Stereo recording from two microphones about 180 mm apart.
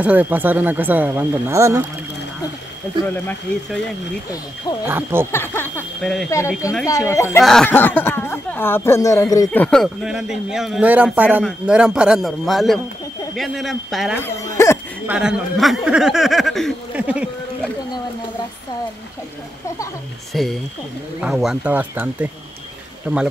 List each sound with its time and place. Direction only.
0.0 s speech: 10° right (ahead or behind)
4.8 s speech: 15° right (ahead or behind)
5.3 s speech: 10° left (ahead or behind)
9.5 s speech: 5° left (ahead or behind)
14.2 s speech: 15° left (ahead or behind)
15.0 s speech: 5° right (ahead or behind)
20.3 s speech: centre (ahead or behind)